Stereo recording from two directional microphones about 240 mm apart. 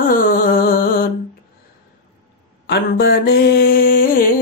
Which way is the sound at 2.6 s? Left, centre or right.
Left.